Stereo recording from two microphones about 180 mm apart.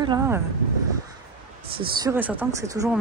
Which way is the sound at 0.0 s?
20° right (ahead or behind).